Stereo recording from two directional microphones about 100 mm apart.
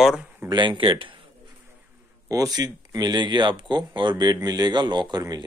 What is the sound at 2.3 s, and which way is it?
Speech, 40° right (ahead or behind).